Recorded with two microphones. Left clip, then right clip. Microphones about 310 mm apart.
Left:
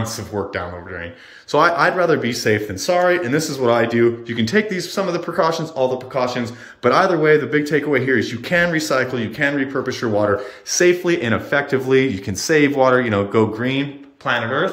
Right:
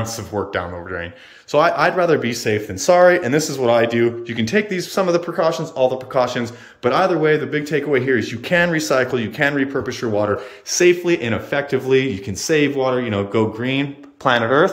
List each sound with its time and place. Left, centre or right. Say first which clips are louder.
0.3 s speech: right 2 dB; centre
14.2 s speech: right 4 dB; centre